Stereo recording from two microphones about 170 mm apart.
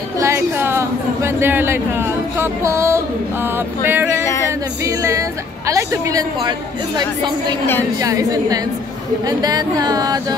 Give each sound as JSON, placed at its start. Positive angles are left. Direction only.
{"t": 0.2, "sound": "a woman's voice", "side_deg": -15}
{"t": 3.5, "sound": "music", "side_deg": -10}
{"t": 4.2, "sound": "singing", "side_deg": 20}
{"t": 4.5, "sound": "music", "side_deg": -15}
{"t": 5.7, "sound": "a woman's voice", "side_deg": -20}
{"t": 8.0, "sound": "a woman's voice", "side_deg": -20}